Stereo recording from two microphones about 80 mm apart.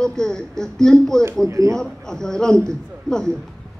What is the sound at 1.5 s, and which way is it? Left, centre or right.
Speech, right.